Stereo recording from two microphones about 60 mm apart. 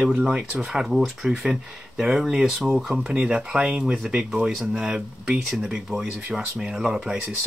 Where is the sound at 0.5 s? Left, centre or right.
Centre.